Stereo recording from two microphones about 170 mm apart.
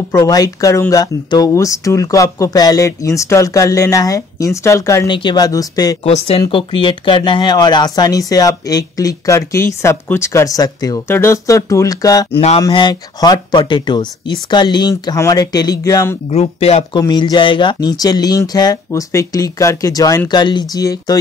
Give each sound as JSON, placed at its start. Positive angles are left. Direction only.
{"t": 0.1, "sound": "speech", "side_deg": 20}
{"t": 6.0, "sound": "speech", "side_deg": 35}
{"t": 12.4, "sound": "speech", "side_deg": 35}
{"t": 12.6, "sound": "speech", "side_deg": 25}
{"t": 16.3, "sound": "speech", "side_deg": 35}
{"t": 17.0, "sound": "speech", "side_deg": 25}